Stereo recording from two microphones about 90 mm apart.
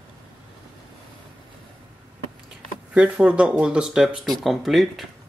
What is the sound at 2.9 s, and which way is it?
Speech, 10° right (ahead or behind).